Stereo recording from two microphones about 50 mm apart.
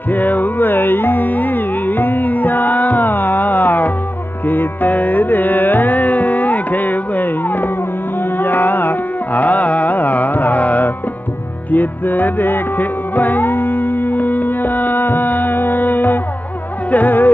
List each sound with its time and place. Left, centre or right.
0.1 s music: left
8.4 s carnatic music: left
11.7 s music: left